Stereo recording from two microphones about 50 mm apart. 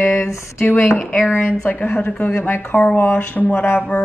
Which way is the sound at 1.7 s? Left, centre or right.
Left.